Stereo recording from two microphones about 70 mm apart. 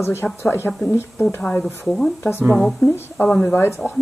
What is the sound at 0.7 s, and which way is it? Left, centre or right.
Speech, centre.